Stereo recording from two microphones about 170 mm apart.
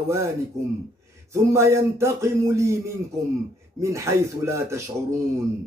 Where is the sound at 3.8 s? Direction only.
15° right (ahead or behind).